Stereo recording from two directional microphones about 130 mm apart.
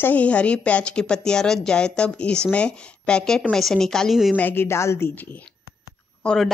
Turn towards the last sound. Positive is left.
turn(degrees=0)  # may be behind; listen again after turning